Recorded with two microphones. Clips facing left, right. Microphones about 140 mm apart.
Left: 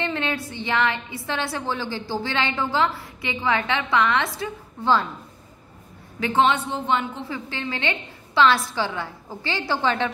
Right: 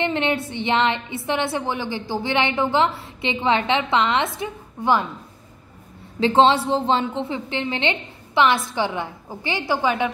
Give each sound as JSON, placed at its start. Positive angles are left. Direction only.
{"t": 0.0, "sound": "a woman's voice", "side_deg": -20}
{"t": 6.1, "sound": "a woman's voice", "side_deg": -25}